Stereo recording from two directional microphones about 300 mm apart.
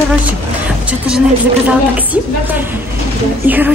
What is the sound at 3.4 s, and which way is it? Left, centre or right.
Speech, centre.